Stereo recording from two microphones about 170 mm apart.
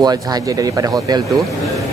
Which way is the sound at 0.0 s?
25° right (ahead or behind).